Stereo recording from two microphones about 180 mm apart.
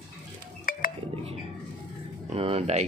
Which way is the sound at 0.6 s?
50° left (ahead or behind).